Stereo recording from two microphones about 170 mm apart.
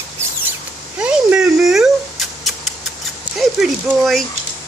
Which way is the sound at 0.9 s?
5° right (ahead or behind).